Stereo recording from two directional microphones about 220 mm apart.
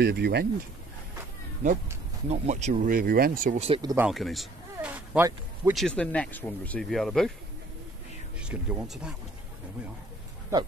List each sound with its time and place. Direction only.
0.0 s speech: 50° right (ahead or behind)
2.2 s speech: 30° right (ahead or behind)
3.9 s speech: 5° right (ahead or behind)
5.9 s speech: 5° left (ahead or behind)
8.4 s speech: 5° right (ahead or behind)